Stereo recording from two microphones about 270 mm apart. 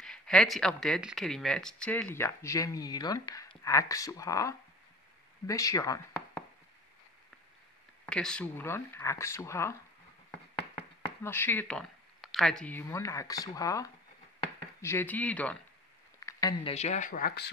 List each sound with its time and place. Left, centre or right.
0.0 s speech: centre
8.0 s speech: centre
11.2 s speech: centre
16.2 s a sound: centre
16.7 s speech: left